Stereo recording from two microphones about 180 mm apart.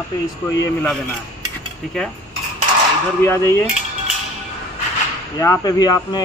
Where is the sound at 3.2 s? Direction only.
15° left (ahead or behind).